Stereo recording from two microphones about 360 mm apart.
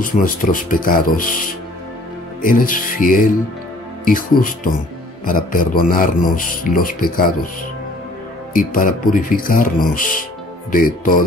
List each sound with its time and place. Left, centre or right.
0.0 s a man's voice: left
8.5 s a man's voice: left